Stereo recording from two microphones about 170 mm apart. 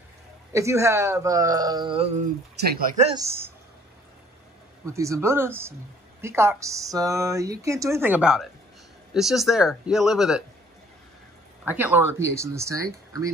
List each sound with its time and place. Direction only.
0.5 s speech: 15° right (ahead or behind)
2.6 s speech: 75° right (ahead or behind)
3.2 s speech: 15° right (ahead or behind)
4.8 s speech: 20° right (ahead or behind); by 10.4 s 5° right (ahead or behind)
11.6 s speech: 10° right (ahead or behind)